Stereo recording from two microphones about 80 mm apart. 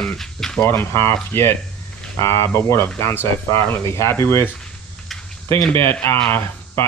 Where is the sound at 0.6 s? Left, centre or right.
Left.